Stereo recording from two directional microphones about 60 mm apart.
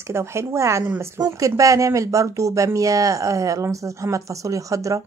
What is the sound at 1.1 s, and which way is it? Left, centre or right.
Speech, right.